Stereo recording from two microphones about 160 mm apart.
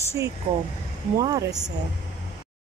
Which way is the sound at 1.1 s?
20° right (ahead or behind).